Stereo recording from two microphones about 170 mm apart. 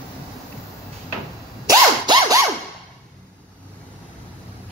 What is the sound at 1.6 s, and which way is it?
Dog, 25° right (ahead or behind).